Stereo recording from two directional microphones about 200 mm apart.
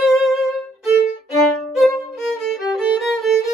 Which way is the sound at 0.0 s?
Centre (ahead or behind).